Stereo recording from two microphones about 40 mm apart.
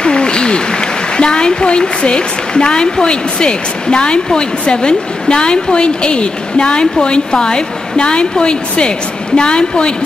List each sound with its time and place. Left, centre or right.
0.0 s speech: left